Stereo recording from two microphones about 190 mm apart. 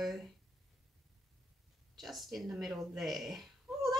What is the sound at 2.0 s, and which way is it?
A woman's voice, centre (ahead or behind).